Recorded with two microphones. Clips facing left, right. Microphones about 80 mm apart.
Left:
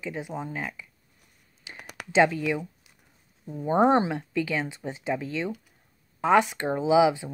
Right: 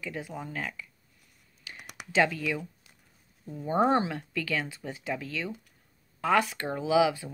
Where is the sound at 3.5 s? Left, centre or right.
Left.